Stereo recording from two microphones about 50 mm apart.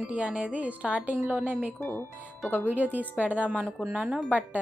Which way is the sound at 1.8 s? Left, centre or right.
Left.